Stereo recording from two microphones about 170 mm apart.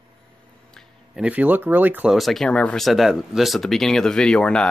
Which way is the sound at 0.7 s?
5° right (ahead or behind).